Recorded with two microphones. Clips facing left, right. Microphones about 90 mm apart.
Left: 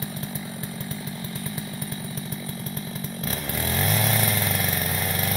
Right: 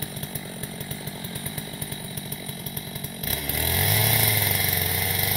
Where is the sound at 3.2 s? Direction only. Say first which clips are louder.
Left 1 dB; 35° left (ahead or behind).